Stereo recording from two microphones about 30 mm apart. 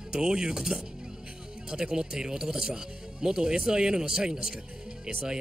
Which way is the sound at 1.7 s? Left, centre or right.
Right.